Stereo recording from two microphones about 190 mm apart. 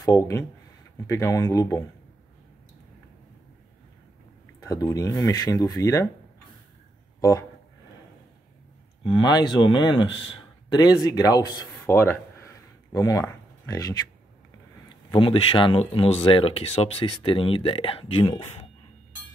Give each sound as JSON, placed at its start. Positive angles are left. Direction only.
{"t": 0.0, "sound": "speech", "side_deg": 15}
{"t": 4.6, "sound": "speech", "side_deg": 20}
{"t": 7.2, "sound": "a sound", "side_deg": 15}
{"t": 9.0, "sound": "a man's voice", "side_deg": 25}
{"t": 15.0, "sound": "speech", "side_deg": 25}